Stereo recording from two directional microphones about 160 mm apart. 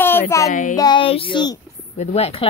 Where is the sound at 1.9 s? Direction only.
40° left (ahead or behind).